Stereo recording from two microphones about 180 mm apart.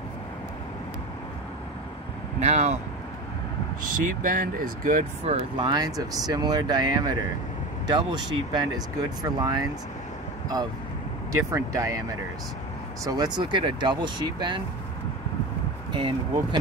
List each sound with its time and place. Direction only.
2.4 s speech: 40° right (ahead or behind)
4.0 s speech: 50° right (ahead or behind)
5.7 s speech: 20° right (ahead or behind)
11.5 s speech: 15° right (ahead or behind)
13.0 s speech: 20° right (ahead or behind)
15.9 s speech: 25° right (ahead or behind)